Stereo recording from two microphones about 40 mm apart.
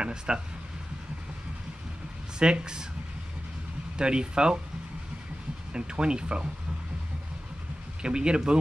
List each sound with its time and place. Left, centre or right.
0.0 s speech: right
2.3 s speech: right
4.0 s speech: right
5.7 s speech: right
8.0 s speech: right